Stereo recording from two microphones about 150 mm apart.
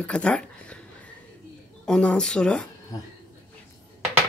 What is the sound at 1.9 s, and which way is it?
Speech, 5° left (ahead or behind).